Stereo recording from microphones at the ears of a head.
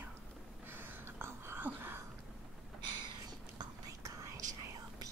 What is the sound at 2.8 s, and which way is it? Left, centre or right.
Whispering, right.